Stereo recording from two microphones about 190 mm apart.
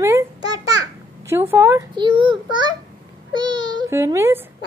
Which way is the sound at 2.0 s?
25° right (ahead or behind).